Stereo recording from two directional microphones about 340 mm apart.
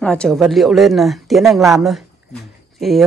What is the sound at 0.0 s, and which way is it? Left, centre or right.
Speech, centre.